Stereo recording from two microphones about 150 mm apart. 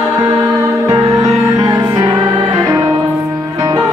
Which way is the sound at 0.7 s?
20° right (ahead or behind).